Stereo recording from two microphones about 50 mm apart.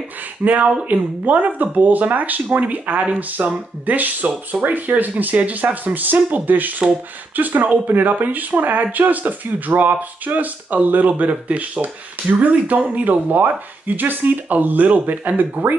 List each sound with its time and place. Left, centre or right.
0.4 s speech: right